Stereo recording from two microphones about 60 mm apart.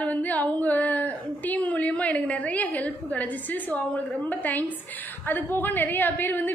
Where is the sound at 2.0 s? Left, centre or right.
Left.